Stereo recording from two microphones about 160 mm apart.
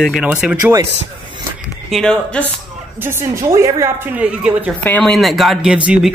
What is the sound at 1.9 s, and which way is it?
Speech, 5° left (ahead or behind).